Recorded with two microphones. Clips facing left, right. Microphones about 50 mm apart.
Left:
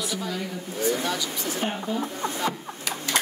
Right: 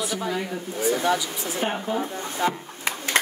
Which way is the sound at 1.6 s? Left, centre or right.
Right.